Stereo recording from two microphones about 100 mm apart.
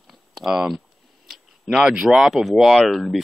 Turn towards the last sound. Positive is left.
turn(degrees=0)  # may be behind; listen again after turning